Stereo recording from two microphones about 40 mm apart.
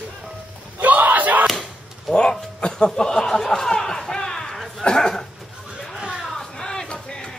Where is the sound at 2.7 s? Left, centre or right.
Centre.